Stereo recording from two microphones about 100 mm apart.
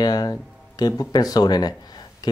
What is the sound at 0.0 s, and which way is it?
Speech, 40° left (ahead or behind).